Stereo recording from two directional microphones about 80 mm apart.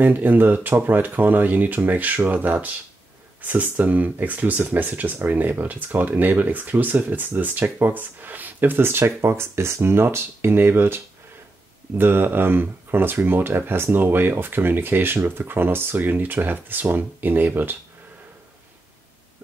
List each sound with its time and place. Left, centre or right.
0.0 s speech: right